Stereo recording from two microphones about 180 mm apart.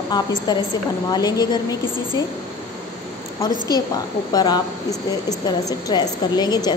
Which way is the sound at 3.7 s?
20° left (ahead or behind).